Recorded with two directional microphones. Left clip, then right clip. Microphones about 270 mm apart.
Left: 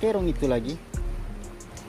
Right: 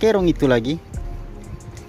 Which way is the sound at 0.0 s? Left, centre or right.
Right.